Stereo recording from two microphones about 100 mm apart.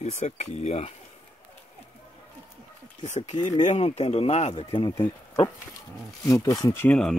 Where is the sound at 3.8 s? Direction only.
90° left.